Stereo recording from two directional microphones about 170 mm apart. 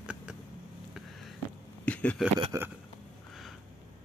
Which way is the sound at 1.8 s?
5° left (ahead or behind).